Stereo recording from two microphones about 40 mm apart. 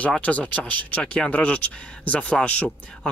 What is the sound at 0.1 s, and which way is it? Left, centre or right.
Speech, left.